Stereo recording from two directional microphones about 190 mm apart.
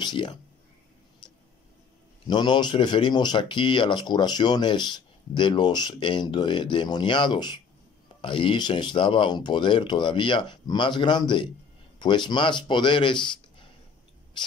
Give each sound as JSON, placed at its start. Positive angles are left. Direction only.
{"t": 0.0, "sound": "speech", "side_deg": 25}
{"t": 1.2, "sound": "a sound", "side_deg": 25}
{"t": 2.2, "sound": "speech", "side_deg": 25}